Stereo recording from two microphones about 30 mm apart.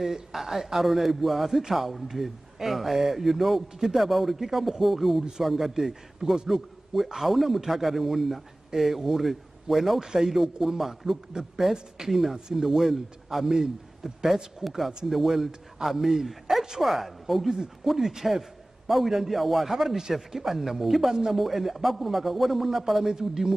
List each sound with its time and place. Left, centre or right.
0.0 s a man's voice: centre
14.6 s speech: right
15.0 s a man's voice: centre
18.9 s a man's voice: centre